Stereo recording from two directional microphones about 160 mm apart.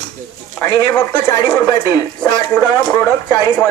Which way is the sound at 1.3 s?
20° left (ahead or behind).